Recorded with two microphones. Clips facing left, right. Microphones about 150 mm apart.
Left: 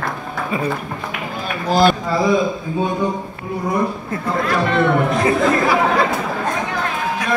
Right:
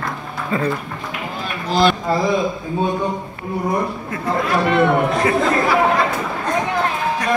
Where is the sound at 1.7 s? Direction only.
45° left (ahead or behind).